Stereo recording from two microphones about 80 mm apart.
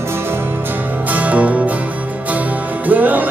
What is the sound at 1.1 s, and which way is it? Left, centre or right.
Music, centre.